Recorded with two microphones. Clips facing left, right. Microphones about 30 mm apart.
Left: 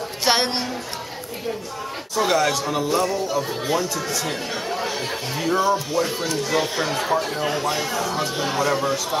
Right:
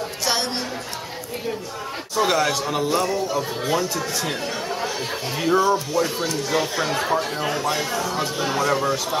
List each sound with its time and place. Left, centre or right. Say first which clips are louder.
0.2 s music: left 4 dB; left
2.1 s speech: even; centre
5.6 s speech: left 1 dB; centre